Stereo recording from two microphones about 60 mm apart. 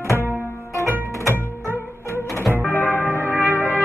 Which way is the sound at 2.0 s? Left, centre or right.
Left.